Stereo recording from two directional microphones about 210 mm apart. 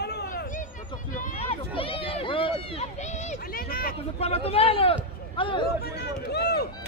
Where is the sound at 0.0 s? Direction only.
50° left (ahead or behind).